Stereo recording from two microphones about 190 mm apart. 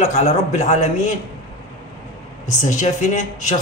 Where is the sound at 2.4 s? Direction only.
40° left (ahead or behind).